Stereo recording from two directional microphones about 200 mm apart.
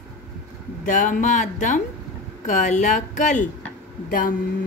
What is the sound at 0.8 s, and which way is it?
Speech, 40° left (ahead or behind).